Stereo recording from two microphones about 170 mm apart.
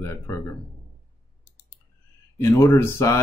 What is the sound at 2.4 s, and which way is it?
Speech, 15° left (ahead or behind).